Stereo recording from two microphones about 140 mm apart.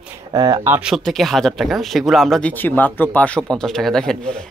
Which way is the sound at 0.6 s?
10° right (ahead or behind).